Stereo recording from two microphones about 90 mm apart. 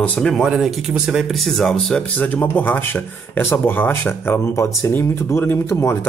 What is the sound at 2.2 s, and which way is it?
Speech, 20° left (ahead or behind).